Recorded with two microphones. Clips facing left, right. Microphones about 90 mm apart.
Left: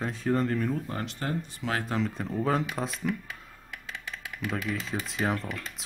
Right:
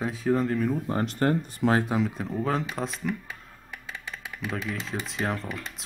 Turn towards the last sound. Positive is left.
turn(degrees=0)  # may be behind; listen again after turning